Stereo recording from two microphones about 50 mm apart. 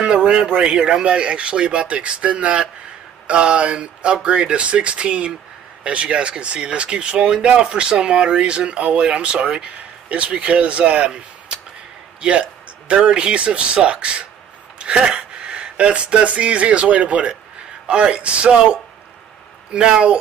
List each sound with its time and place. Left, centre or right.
0.0 s speech: centre
11.1 s a sound: right
12.2 s a man's voice: right